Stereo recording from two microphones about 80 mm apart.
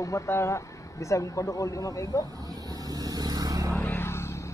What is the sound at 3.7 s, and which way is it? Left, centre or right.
Vehicle, left.